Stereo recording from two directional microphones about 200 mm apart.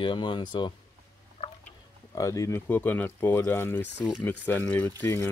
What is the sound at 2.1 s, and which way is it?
Speech, 15° left (ahead or behind).